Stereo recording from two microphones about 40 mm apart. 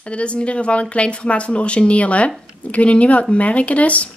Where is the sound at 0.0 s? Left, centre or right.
Left.